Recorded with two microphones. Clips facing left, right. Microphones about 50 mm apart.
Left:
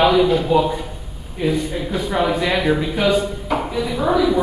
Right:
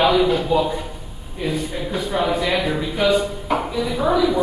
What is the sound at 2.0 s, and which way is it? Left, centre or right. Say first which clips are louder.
Speech: left 1 dB; centre.